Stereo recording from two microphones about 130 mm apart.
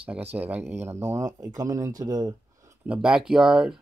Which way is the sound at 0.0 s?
10° right (ahead or behind).